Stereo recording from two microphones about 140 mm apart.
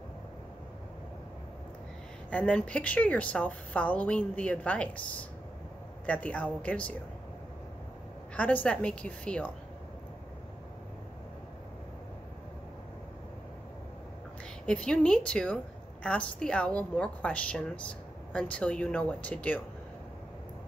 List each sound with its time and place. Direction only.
2.3 s a woman's voice: 10° left (ahead or behind)
8.4 s a woman's voice: 10° left (ahead or behind)
14.7 s a woman's voice: 5° left (ahead or behind)